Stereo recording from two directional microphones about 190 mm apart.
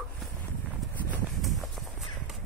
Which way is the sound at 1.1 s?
Centre (ahead or behind).